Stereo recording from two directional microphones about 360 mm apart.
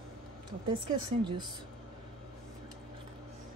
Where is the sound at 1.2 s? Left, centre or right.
Centre.